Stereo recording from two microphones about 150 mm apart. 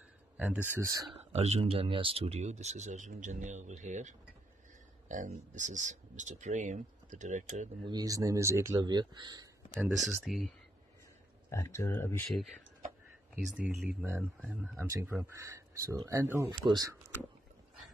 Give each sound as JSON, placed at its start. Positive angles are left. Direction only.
{"t": 0.7, "sound": "speech", "side_deg": -20}
{"t": 1.3, "sound": "speech", "side_deg": -45}
{"t": 7.8, "sound": "speech", "side_deg": -25}
{"t": 9.9, "sound": "speech", "side_deg": 0}
{"t": 11.5, "sound": "speech", "side_deg": 20}
{"t": 13.6, "sound": "speech", "side_deg": -10}